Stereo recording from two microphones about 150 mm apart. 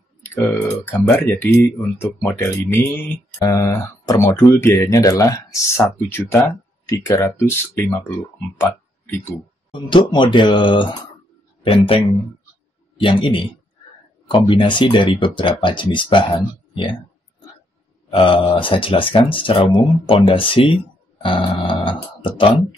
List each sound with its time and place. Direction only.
0.2 s speech: 15° left (ahead or behind)
3.3 s speech: 25° left (ahead or behind)
9.7 s speech: 30° left (ahead or behind)
18.1 s speech: 35° left (ahead or behind)